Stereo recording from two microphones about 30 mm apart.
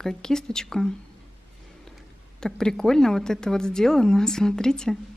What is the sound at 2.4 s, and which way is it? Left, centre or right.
Speech, centre.